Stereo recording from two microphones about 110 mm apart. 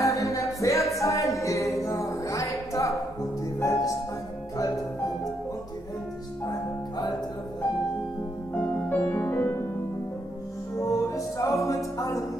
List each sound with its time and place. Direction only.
0.0 s music: 30° left (ahead or behind)
8.5 s music: 20° left (ahead or behind)
10.8 s music: 30° left (ahead or behind)